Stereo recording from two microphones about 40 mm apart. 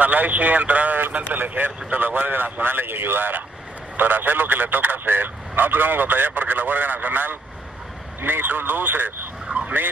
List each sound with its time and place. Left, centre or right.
0.0 s speech: right
9.5 s vehicle: right